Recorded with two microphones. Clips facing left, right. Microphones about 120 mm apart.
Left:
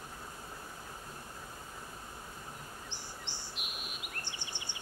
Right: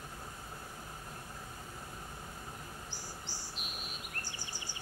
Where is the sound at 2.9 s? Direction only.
40° right (ahead or behind).